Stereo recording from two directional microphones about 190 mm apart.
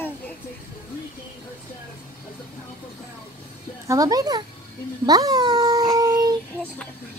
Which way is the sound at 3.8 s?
20° right (ahead or behind).